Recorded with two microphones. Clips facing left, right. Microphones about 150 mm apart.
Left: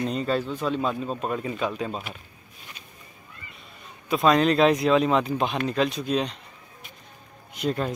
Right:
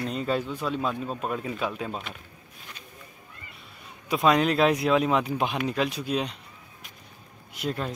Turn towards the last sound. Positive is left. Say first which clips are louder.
# left 4 dB
turn(degrees=0)  # may be behind; listen again after turning